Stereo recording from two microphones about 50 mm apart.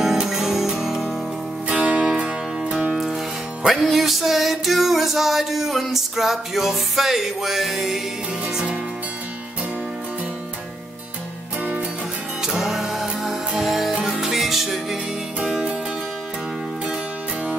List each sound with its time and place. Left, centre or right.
0.2 s music: centre
1.7 s music: centre
3.6 s music: centre
12.4 s music: centre
15.4 s music: centre